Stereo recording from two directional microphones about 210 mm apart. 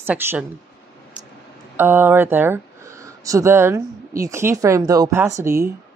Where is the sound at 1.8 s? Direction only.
10° right (ahead or behind).